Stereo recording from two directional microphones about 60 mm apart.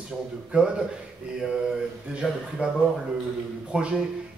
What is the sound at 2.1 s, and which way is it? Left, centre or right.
Speech, centre.